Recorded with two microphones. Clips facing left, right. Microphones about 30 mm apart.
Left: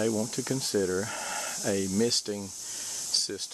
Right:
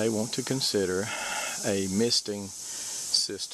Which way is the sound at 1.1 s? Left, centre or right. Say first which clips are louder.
Right 2 dB; right.